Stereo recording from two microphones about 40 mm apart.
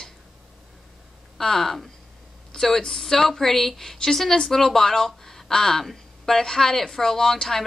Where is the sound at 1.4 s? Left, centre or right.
Centre.